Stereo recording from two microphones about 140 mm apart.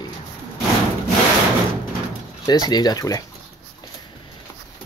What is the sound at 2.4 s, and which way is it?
Speech, 25° left (ahead or behind).